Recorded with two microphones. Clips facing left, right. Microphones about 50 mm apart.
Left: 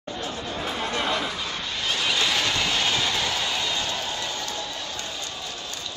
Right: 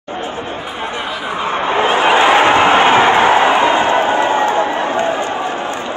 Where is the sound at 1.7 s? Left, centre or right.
Right.